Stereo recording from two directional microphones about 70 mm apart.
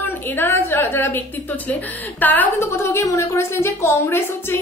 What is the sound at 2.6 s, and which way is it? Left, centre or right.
A woman's voice, left.